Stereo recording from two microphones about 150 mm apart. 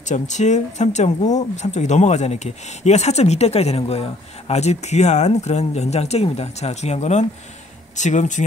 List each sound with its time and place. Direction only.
0.0 s speech: 50° left (ahead or behind)